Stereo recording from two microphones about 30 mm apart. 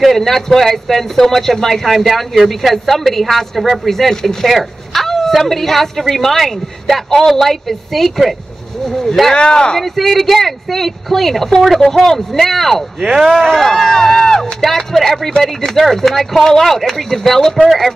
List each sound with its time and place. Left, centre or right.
0.1 s speech: centre
4.1 s speech: centre
4.5 s a sound: centre
5.3 s speech: centre
9.3 s speech: left
9.8 s speech: centre
13.0 s speech: centre
13.5 s speech: centre
14.0 s speech: centre
14.3 s speech: centre
17.6 s speech: centre